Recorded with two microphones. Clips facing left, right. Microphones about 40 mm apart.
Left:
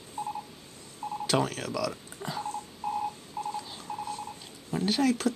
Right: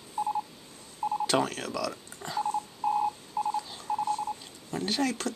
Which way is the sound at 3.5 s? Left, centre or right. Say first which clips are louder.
Right 5 dB; centre.